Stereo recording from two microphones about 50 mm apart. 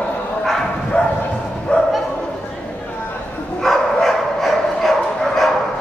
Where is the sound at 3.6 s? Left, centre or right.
Centre.